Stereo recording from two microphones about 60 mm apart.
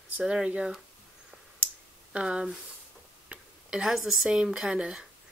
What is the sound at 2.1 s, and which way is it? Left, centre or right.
Speech, centre.